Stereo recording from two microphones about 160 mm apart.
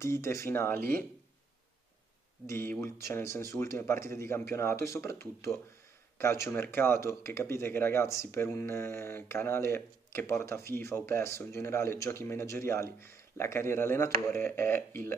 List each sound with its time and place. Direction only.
0.0 s speech: 15° left (ahead or behind)
0.7 s speech: 65° right (ahead or behind)
2.4 s speech: 15° left (ahead or behind)